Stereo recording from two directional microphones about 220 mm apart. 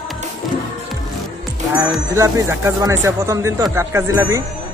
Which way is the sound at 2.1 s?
15° right (ahead or behind).